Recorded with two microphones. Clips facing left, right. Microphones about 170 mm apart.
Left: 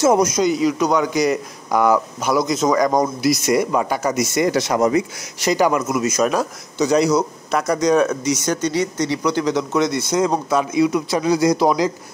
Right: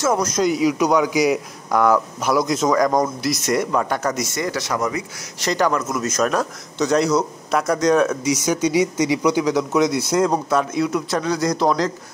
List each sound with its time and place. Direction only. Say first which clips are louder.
0.0 s speech: left 5 dB; 20° left (ahead or behind)
0.3 s speech: left 1 dB; 5° right (ahead or behind)
4.5 s speech: left 6 dB; 20° left (ahead or behind)
5.4 s speech: left 3 dB; 10° left (ahead or behind)